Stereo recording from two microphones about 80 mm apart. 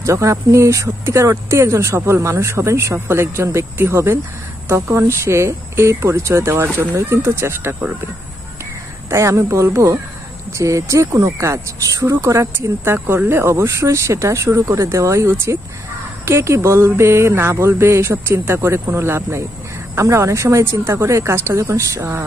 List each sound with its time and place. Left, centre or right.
0.0 s speech: right
9.1 s speech: right
11.1 s speech: right
11.4 s speech: right